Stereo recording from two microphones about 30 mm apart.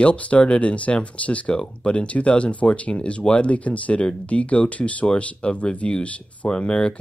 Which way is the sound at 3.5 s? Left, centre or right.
Left.